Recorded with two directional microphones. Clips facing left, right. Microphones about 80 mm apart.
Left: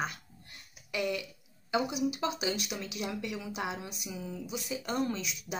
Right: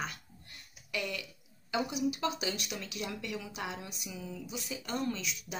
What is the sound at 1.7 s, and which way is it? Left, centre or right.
Speech, centre.